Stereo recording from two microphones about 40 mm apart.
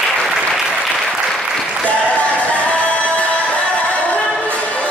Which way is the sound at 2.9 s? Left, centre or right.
Left.